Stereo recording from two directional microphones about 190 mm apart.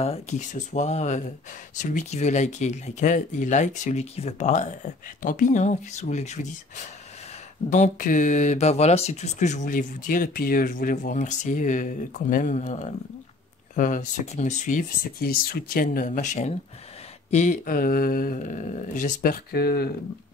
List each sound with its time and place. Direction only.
0.0 s speech: 35° left (ahead or behind)
7.7 s speech: 40° left (ahead or behind)